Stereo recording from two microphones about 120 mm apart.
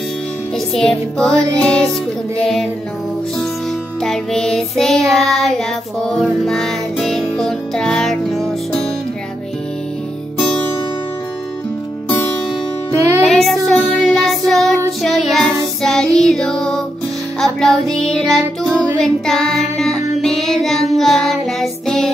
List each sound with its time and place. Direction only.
0.7 s child singing: 5° left (ahead or behind)
4.0 s music: 5° left (ahead or behind)
12.9 s music: 25° right (ahead or behind)
13.2 s child singing: centre (ahead or behind)
17.4 s music: 5° left (ahead or behind)
18.9 s child singing: 5° left (ahead or behind)